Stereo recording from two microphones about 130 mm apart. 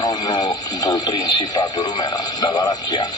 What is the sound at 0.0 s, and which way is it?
Speech, 30° left (ahead or behind).